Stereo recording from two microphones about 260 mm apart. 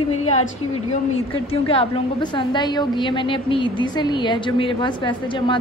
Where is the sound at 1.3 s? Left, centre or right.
Left.